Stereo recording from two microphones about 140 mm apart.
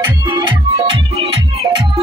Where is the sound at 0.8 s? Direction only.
40° right (ahead or behind).